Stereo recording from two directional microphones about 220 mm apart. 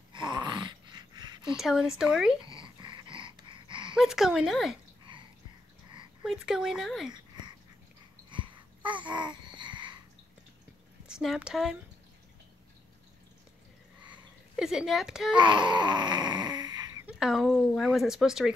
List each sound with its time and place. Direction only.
0.1 s a sound: 20° right (ahead or behind)
1.6 s speech: centre (ahead or behind)
2.4 s wheeze: 20° right (ahead or behind)
3.9 s speech: centre (ahead or behind)
5.1 s a sound: 20° right (ahead or behind)
6.2 s speech: centre (ahead or behind)
8.3 s babbling: 20° right (ahead or behind)
11.1 s speech: 5° right (ahead or behind)
14.6 s speech: 5° right (ahead or behind)
15.3 s a sound: 20° right (ahead or behind)
17.2 s speech: centre (ahead or behind)